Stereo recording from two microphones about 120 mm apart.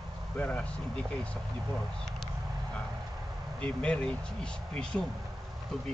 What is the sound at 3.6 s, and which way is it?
Speech, 10° left (ahead or behind).